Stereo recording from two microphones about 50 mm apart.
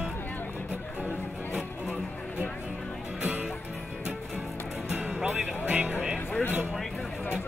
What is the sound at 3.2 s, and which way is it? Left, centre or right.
Music, right.